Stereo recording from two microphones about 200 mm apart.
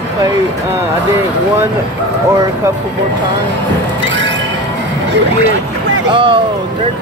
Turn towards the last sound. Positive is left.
turn(degrees=-25)  # may be behind; listen again after turning